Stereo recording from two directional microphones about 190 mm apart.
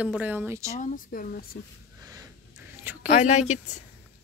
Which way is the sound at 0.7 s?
45° left (ahead or behind).